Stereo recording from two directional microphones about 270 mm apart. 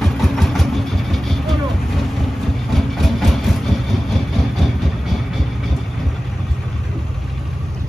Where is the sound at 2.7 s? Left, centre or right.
Centre.